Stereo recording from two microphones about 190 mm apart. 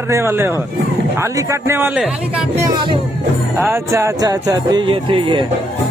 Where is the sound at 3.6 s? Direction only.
15° right (ahead or behind).